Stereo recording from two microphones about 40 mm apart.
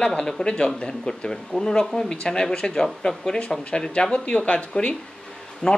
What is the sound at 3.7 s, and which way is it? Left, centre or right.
Speech, left.